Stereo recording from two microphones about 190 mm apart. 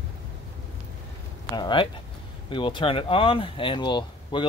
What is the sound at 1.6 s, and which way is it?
Speech, 25° left (ahead or behind).